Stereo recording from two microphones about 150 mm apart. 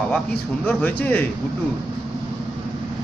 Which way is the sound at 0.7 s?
10° left (ahead or behind).